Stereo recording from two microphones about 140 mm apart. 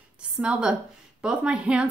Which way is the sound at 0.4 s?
5° right (ahead or behind).